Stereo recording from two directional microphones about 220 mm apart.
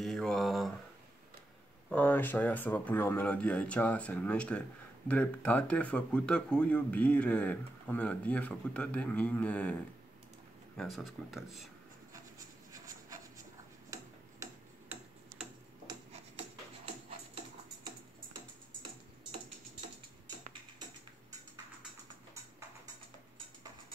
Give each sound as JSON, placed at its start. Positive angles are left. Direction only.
{"t": 0.0, "sound": "mantra", "side_deg": 0}
{"t": 1.9, "sound": "speech", "side_deg": 5}
{"t": 10.8, "sound": "speech", "side_deg": 0}
{"t": 14.4, "sound": "tick-tock", "side_deg": -10}
{"t": 15.9, "sound": "a sound", "side_deg": -30}